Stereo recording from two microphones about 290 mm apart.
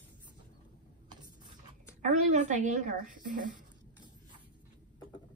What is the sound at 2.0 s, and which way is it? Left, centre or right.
Speech, right.